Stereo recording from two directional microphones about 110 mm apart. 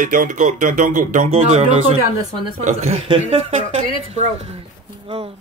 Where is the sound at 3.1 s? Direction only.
60° right (ahead or behind).